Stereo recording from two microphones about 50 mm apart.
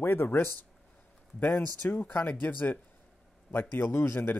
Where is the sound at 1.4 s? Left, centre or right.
Left.